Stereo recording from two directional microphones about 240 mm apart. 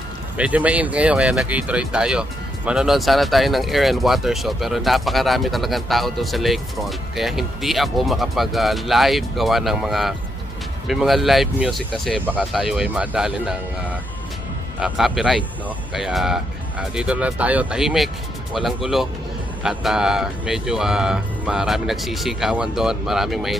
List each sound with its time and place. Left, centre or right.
0.4 s speech: centre